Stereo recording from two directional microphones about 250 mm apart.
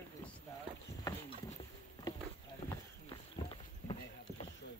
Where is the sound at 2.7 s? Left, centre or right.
Centre.